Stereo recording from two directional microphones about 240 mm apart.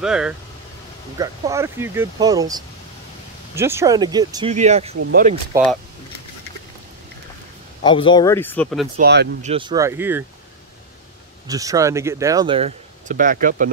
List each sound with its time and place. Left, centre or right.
0.0 s speech: centre
1.1 s speech: centre
4.5 s speech: right
7.8 s speech: centre
8.9 s speech: right
9.4 s speech: right
11.4 s speech: centre; by 13.7 s right